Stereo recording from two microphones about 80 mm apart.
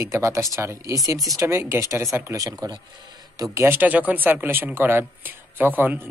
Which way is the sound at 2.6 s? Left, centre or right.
Right.